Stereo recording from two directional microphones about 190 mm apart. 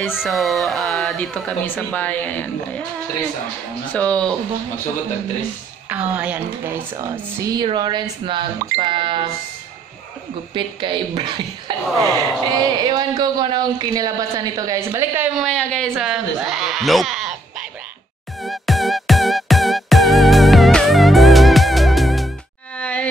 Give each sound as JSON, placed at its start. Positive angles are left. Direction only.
{"t": 0.1, "sound": "speech", "side_deg": 0}
{"t": 3.9, "sound": "speech", "side_deg": 5}
{"t": 5.9, "sound": "speech", "side_deg": -10}
{"t": 10.5, "sound": "speech", "side_deg": -25}
{"t": 15.3, "sound": "speech", "side_deg": 5}
{"t": 18.4, "sound": "music", "side_deg": 0}
{"t": 22.8, "sound": "a sound", "side_deg": 10}